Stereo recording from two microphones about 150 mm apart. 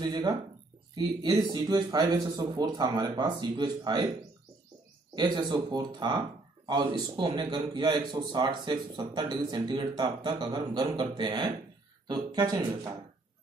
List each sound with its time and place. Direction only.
0.0 s speech: 30° right (ahead or behind)
5.1 s speech: 30° right (ahead or behind)